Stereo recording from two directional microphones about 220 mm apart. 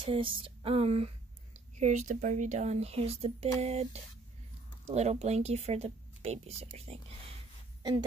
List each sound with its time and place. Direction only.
0.0 s speech: 25° right (ahead or behind)